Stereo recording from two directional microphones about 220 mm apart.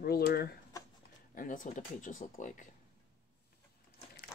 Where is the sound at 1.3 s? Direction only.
35° left (ahead or behind).